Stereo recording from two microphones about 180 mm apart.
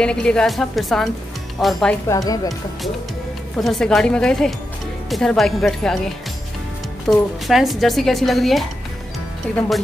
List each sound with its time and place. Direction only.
0.0 s speech: 5° left (ahead or behind)
2.0 s speech: 20° left (ahead or behind)
3.5 s speech: centre (ahead or behind)